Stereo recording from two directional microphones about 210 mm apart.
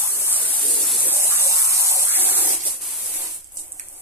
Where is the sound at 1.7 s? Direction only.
15° right (ahead or behind).